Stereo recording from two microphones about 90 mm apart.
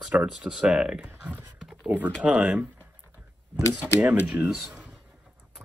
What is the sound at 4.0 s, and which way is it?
Speech, 20° right (ahead or behind).